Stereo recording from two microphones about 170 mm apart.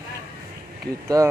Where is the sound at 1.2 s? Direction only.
20° right (ahead or behind).